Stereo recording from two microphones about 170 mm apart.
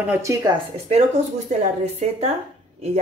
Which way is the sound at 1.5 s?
45° right (ahead or behind).